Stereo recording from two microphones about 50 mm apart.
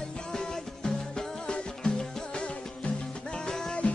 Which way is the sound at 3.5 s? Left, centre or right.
Centre.